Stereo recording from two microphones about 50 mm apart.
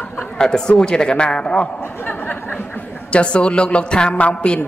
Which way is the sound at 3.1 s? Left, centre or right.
Left.